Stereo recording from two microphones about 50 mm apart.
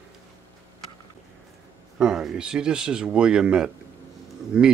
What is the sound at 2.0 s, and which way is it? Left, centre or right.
Speech, centre.